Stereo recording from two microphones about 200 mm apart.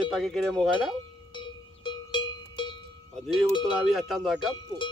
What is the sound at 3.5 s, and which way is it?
Speech, 20° left (ahead or behind).